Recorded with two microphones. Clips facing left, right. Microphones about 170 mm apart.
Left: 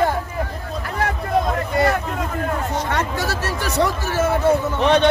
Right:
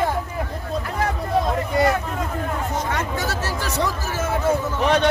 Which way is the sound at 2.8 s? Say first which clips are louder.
Left 2 dB; 65° left (ahead or behind).